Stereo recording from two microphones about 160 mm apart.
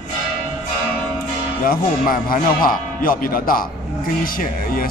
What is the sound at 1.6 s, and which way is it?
Speech, 65° left (ahead or behind).